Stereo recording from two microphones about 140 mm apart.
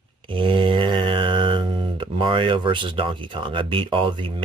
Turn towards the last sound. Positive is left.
turn(degrees=-35)  # may be behind; listen again after turning